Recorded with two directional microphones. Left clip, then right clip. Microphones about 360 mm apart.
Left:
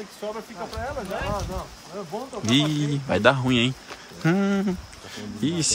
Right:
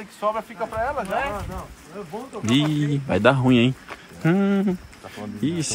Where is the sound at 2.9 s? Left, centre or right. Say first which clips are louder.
Right 1 dB; centre.